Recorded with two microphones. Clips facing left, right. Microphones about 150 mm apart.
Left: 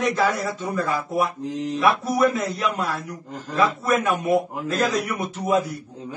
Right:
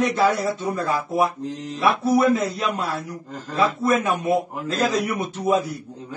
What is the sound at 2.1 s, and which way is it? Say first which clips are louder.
Speech: right 3 dB; 30° right (ahead or behind).